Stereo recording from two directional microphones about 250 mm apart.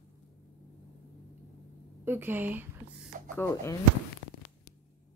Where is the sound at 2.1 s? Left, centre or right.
Centre.